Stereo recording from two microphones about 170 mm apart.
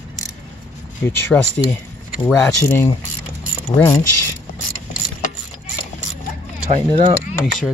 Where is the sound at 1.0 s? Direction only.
15° left (ahead or behind).